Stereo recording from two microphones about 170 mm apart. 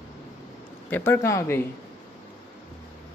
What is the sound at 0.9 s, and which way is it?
Speech, 15° left (ahead or behind).